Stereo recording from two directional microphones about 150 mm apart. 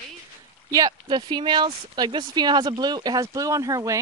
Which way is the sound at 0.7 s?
25° right (ahead or behind).